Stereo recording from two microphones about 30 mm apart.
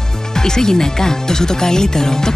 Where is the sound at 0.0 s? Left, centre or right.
Centre.